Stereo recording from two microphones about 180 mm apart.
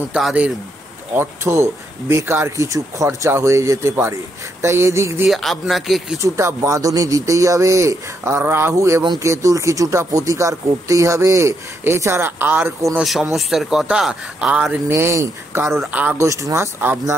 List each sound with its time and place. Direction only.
0.1 s speech: 5° right (ahead or behind)
5.3 s speech: centre (ahead or behind)
6.2 s speech: 15° right (ahead or behind)
13.0 s speech: centre (ahead or behind)